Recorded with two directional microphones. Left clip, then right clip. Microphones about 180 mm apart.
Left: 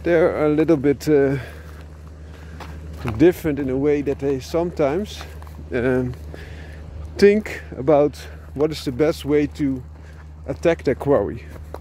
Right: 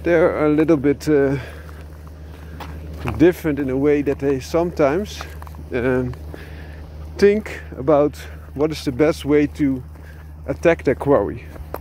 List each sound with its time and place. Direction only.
0.0 s speech: 35° left (ahead or behind)
1.0 s speech: 50° left (ahead or behind)
3.2 s speech: 40° left (ahead or behind)
3.8 s speech: 20° left (ahead or behind)
5.7 s speech: 35° left (ahead or behind)
7.2 s speech: 50° left (ahead or behind)
8.5 s speech: 30° left (ahead or behind)